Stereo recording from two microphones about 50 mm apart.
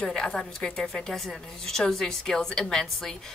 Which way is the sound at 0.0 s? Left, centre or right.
Centre.